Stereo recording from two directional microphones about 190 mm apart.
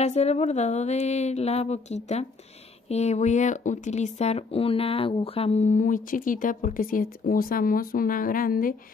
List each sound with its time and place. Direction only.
0.0 s speech: 35° left (ahead or behind)